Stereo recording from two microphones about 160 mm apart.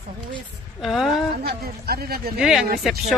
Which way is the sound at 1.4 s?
70° right (ahead or behind).